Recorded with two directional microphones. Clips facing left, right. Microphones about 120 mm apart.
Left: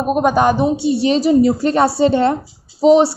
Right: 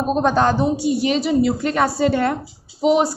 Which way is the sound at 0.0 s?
10° left (ahead or behind).